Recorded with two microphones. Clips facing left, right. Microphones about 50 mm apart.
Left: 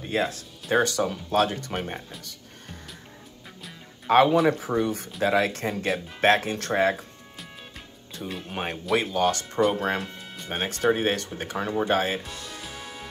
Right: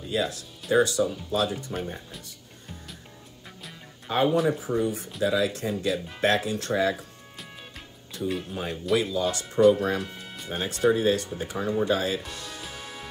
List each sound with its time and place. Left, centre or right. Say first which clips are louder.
0.0 s speech: left 1 dB; left
4.1 s speech: left 5 dB; left
4.5 s speech: left 2 dB; left
8.5 s speech: left 5 dB; left
10.0 s music: even; centre
10.5 s speech: even; left
12.6 s music: even; centre